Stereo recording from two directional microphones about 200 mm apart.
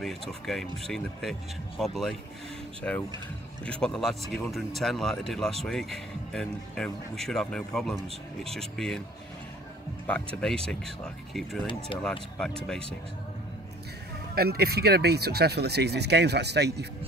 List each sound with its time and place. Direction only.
0.0 s speech: centre (ahead or behind)
10.0 s speech: 5° left (ahead or behind)
12.0 s speech: 5° left (ahead or behind)
14.3 s speech: 50° right (ahead or behind)